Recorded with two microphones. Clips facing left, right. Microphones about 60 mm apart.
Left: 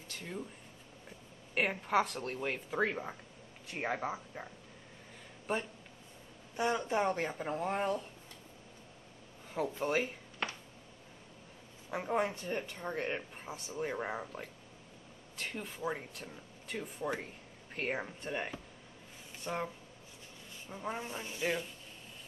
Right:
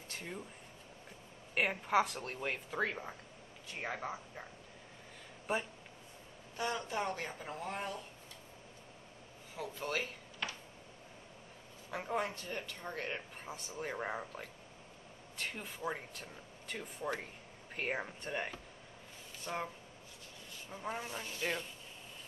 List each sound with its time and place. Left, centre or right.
1.5 s speech: centre
5.5 s speech: centre
6.5 s a woman's voice: left
9.8 s a sound: left
11.9 s speech: centre
13.4 s speech: centre
20.7 s speech: centre
21.1 s speech: centre